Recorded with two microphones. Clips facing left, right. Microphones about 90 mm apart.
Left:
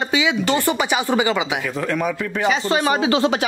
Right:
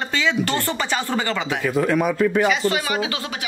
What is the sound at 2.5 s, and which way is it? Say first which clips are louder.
Speech: left 3 dB; 35° left (ahead or behind).